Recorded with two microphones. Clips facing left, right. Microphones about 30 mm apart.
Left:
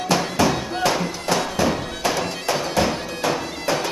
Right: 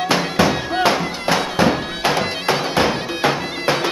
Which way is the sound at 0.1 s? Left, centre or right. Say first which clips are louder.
Right 1 dB; right.